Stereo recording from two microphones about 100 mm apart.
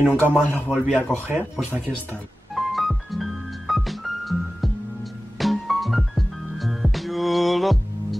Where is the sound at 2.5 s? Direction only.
Centre (ahead or behind).